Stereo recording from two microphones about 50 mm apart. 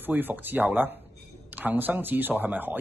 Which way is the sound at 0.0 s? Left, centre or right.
Right.